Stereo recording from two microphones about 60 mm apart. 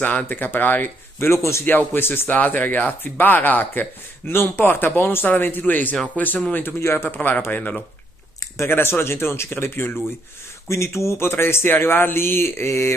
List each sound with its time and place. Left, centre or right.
0.0 s speech: left
1.3 s speech: left
2.0 s speech: left
6.8 s speech: left
7.2 s speech: left
7.4 s speech: left
10.7 s speech: left